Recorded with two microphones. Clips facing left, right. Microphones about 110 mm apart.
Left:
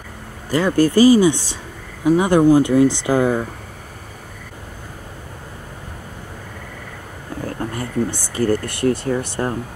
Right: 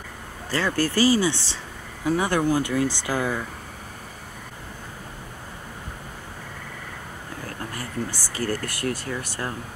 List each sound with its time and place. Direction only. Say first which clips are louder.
0.5 s speech: left 8 dB; 15° left (ahead or behind)
7.4 s speech: left 9 dB; 25° left (ahead or behind)